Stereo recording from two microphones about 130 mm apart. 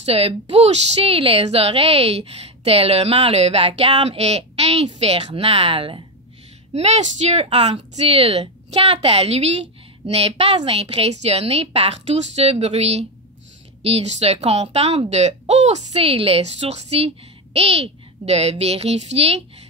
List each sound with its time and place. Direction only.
0.0 s a woman's voice: 50° right (ahead or behind)
6.7 s a woman's voice: 60° right (ahead or behind)